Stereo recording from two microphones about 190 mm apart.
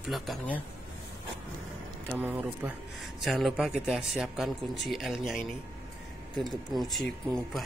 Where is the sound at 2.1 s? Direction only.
10° right (ahead or behind).